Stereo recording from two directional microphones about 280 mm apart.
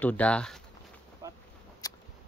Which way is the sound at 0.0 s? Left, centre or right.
Centre.